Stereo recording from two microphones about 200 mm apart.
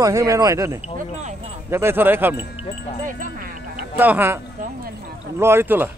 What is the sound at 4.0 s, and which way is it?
Speech, 10° right (ahead or behind).